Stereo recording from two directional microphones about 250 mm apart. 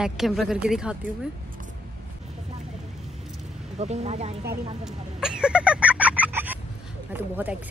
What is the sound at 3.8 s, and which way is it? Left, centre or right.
Speech, right.